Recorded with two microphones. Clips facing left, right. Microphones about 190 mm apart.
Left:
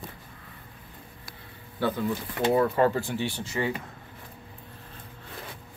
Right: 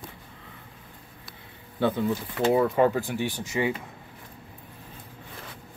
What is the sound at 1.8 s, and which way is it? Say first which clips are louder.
Speech: right 3 dB; 20° right (ahead or behind).